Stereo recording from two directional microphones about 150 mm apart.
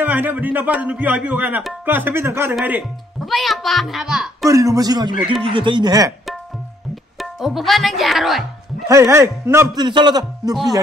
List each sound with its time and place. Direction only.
0.0 s speech: 10° right (ahead or behind)
3.3 s speech: centre (ahead or behind)
4.5 s a man's voice: 20° right (ahead or behind)
7.2 s speech: centre (ahead or behind)
8.8 s a man's voice: 20° right (ahead or behind)
9.8 s a man's voice: 30° right (ahead or behind)